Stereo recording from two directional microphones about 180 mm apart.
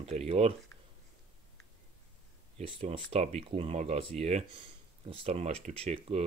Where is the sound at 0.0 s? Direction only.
35° right (ahead or behind).